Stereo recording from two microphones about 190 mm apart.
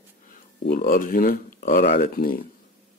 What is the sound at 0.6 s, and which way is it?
Speech, 50° left (ahead or behind).